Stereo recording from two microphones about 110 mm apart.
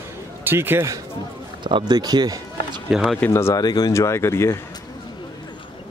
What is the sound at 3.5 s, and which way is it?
Speech, 35° left (ahead or behind).